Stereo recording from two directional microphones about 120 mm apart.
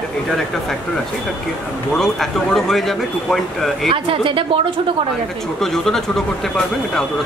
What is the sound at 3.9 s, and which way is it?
Speech, 45° right (ahead or behind).